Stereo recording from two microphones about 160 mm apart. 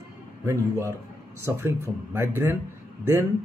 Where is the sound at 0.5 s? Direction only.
20° right (ahead or behind).